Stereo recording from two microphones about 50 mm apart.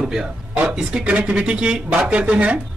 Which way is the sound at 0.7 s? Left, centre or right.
Right.